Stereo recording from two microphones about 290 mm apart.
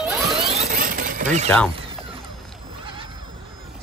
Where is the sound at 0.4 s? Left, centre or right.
Right.